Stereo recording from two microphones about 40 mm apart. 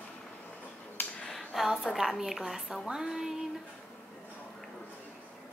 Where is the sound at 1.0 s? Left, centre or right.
Left.